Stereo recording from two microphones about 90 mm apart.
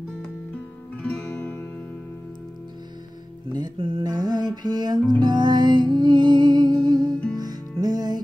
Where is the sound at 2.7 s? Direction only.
50° right (ahead or behind).